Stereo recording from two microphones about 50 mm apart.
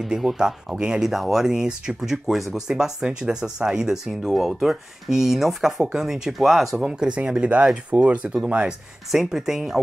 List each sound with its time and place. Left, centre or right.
0.0 s speech: centre
6.8 s speech: centre
9.1 s speech: centre